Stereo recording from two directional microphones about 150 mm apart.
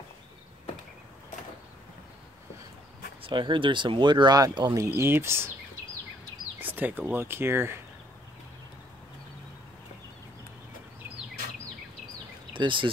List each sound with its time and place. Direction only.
3.2 s speech: 35° right (ahead or behind); by 5.5 s 15° right (ahead or behind)
6.6 s speech: 10° right (ahead or behind)
12.5 s speech: 35° right (ahead or behind)